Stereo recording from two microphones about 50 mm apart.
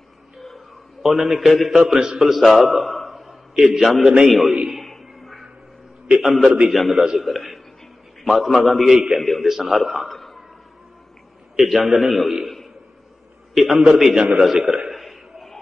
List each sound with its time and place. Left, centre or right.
1.0 s a man's voice: centre
1.8 s a man's voice: centre
4.8 s music: centre
6.1 s a man's voice: centre
6.4 s a man's voice: right
6.7 s a man's voice: centre
9.2 s a man's voice: centre
11.5 s a man's voice: centre
13.6 s a man's voice: centre
14.9 s a sound: centre